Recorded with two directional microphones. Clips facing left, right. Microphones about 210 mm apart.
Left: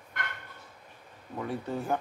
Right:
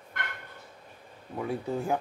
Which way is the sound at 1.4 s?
10° right (ahead or behind).